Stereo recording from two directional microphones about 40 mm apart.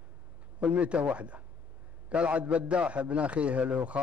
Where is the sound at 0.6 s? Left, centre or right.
Right.